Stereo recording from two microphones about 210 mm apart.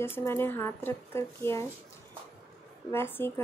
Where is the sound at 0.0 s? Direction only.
10° left (ahead or behind).